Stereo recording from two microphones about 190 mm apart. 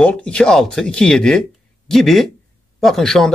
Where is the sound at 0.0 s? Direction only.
5° left (ahead or behind).